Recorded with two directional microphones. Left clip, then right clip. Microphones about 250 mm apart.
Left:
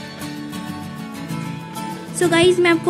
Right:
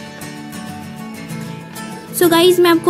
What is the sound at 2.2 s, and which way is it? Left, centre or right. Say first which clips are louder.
Music: right 4 dB; centre.